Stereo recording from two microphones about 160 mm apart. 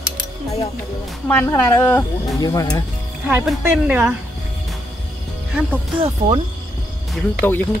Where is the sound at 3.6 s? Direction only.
15° right (ahead or behind).